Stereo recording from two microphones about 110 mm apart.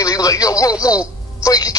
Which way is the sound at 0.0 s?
30° left (ahead or behind).